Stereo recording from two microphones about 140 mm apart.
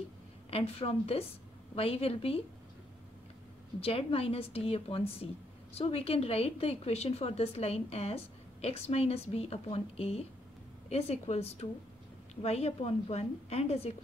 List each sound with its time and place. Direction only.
0.5 s a woman's voice: 45° left (ahead or behind)
3.8 s a woman's voice: 45° left (ahead or behind)